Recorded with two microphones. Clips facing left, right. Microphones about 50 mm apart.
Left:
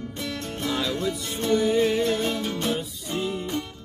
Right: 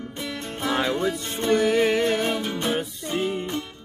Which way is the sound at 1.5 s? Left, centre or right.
Right.